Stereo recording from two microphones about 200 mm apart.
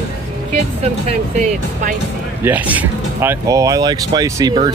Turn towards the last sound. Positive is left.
turn(degrees=-20)  # may be behind; listen again after turning